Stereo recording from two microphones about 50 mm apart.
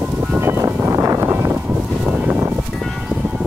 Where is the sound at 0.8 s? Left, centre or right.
Right.